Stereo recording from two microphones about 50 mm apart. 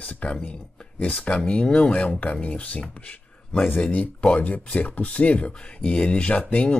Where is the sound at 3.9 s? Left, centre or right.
Left.